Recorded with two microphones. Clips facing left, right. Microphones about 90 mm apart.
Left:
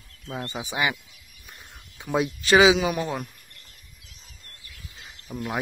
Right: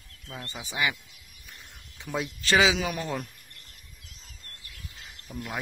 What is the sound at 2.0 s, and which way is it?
Speech, 15° left (ahead or behind).